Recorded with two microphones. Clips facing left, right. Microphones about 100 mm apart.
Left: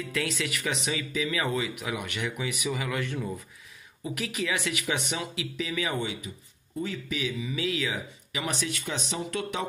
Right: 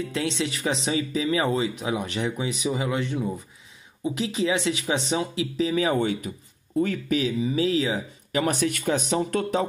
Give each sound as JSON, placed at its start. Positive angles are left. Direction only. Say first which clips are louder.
{"t": 0.0, "sound": "speech", "louder": "right 4 dB", "side_deg": -25}
{"t": 8.4, "sound": "speech", "louder": "right 8 dB", "side_deg": -50}